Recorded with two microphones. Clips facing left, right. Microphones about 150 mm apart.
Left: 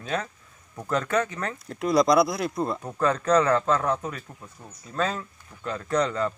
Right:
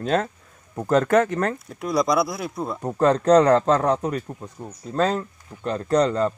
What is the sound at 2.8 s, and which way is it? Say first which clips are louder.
Speech: right 10 dB; 35° right (ahead or behind).